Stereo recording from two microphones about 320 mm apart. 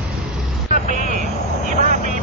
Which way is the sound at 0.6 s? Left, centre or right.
Right.